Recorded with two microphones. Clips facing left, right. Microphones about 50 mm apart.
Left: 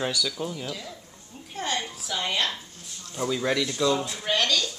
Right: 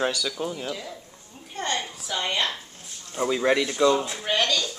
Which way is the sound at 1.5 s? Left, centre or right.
Centre.